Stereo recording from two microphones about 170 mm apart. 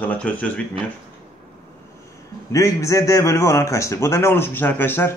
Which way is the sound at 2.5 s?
15° left (ahead or behind).